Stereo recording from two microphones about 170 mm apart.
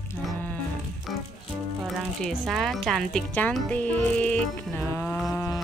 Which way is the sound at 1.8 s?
Centre (ahead or behind).